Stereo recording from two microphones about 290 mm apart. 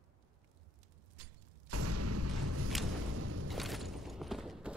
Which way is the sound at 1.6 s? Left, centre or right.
Right.